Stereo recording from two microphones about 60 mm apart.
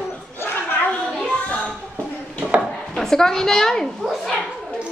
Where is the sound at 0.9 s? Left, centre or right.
Centre.